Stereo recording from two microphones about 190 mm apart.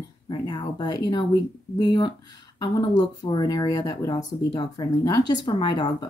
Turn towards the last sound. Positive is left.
turn(degrees=25)  # may be behind; listen again after turning